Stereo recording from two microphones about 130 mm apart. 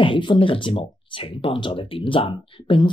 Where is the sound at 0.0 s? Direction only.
40° left (ahead or behind).